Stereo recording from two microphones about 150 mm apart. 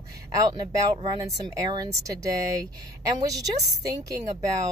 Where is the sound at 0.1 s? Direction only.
25° right (ahead or behind).